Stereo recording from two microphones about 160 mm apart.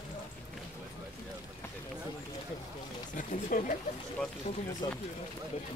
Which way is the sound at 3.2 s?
55° left (ahead or behind).